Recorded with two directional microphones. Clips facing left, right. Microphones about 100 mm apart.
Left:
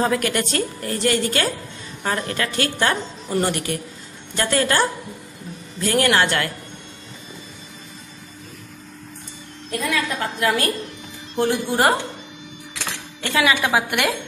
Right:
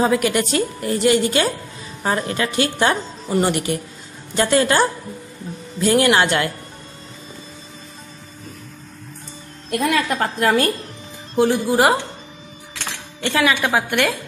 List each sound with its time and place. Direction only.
0.0 s a woman's voice: 10° right (ahead or behind)
5.9 s a woman's voice: 15° right (ahead or behind)
9.8 s a woman's voice: 40° right (ahead or behind)
11.3 s a woman's voice: 5° right (ahead or behind)
13.2 s a woman's voice: 5° left (ahead or behind)